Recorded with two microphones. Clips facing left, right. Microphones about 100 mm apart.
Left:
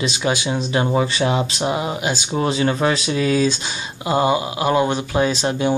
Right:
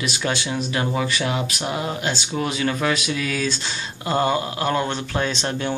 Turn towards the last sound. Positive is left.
turn(degrees=15)  # may be behind; listen again after turning